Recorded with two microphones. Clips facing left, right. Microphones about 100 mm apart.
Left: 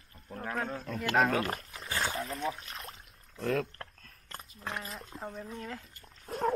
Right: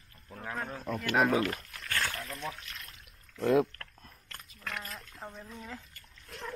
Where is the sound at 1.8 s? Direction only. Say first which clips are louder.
Even; 25° left (ahead or behind).